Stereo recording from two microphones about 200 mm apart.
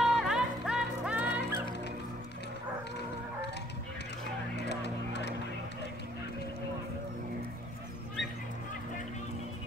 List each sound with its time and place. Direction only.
0.0 s music: centre (ahead or behind)
4.6 s music: 60° left (ahead or behind)